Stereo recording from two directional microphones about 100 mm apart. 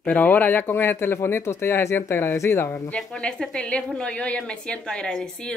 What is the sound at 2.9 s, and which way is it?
A woman's voice, 10° left (ahead or behind).